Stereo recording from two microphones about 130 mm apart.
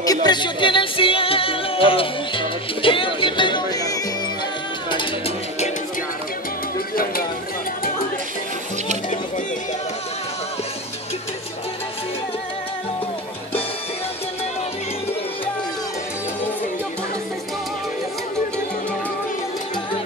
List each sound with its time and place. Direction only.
0.0 s music: 30° left (ahead or behind)